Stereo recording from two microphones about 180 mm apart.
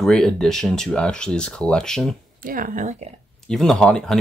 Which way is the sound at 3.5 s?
5° left (ahead or behind).